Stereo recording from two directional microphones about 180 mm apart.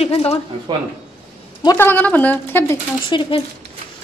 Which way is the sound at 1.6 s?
15° left (ahead or behind).